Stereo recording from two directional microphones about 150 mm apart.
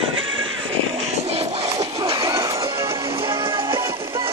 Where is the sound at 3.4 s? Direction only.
35° right (ahead or behind).